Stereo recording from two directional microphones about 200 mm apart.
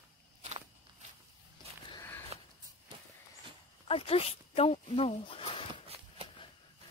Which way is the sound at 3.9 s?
30° left (ahead or behind).